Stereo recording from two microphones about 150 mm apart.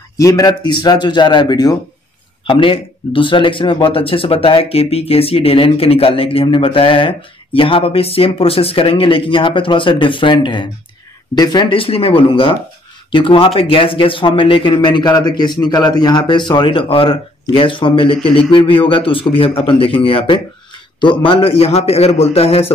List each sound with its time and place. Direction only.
0.2 s speech: 25° left (ahead or behind); by 22.7 s 40° left (ahead or behind)